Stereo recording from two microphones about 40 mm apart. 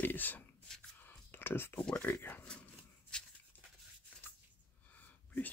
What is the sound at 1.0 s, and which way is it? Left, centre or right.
Whispering, left.